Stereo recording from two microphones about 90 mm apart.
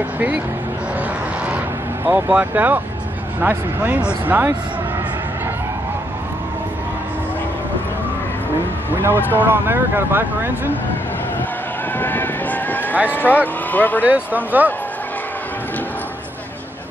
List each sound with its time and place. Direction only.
2.0 s speech: 15° right (ahead or behind)
8.9 s speech: 25° right (ahead or behind)
12.0 s a sound: 20° left (ahead or behind)
13.1 s speech: 20° left (ahead or behind)
14.0 s speech: 15° right (ahead or behind)